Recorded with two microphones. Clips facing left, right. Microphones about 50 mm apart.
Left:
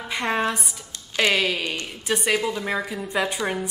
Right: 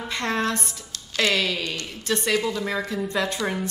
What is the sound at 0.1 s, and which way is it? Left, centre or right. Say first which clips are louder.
A woman's voice: left 2 dB; centre.